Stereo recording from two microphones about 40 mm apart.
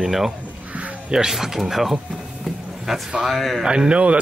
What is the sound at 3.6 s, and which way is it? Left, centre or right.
Speech, centre.